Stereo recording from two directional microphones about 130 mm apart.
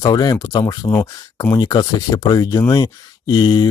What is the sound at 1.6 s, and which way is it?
Speech, 35° left (ahead or behind).